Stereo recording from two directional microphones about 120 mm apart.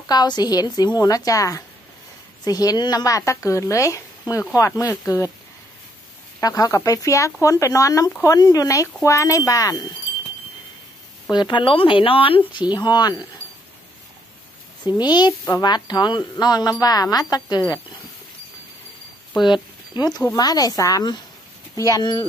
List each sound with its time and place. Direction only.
0.0 s a woman's voice: 35° left (ahead or behind)
6.4 s speech: 30° left (ahead or behind)
11.2 s speech: 40° left (ahead or behind)
12.7 s a woman's voice: 35° left (ahead or behind)
15.0 s a woman's voice: 35° left (ahead or behind)
20.3 s a woman's voice: 30° left (ahead or behind)